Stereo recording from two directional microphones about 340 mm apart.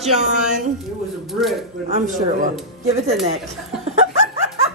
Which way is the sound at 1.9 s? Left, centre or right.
Right.